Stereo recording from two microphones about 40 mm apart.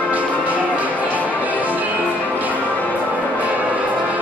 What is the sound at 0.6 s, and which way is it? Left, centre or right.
Music, right.